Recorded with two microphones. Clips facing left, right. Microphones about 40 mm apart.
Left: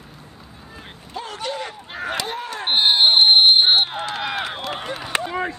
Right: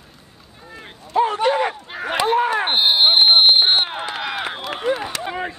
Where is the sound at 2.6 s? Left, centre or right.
Centre.